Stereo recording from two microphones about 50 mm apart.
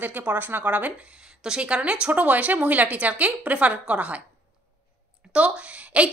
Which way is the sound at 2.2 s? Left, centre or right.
Right.